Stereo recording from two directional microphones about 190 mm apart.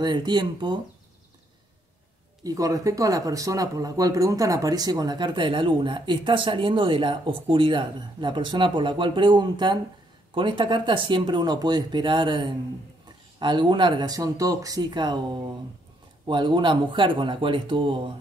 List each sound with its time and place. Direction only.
0.0 s speech: 25° right (ahead or behind)
2.4 s speech: 20° right (ahead or behind)